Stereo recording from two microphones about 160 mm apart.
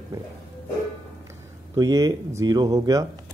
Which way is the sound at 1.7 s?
20° right (ahead or behind).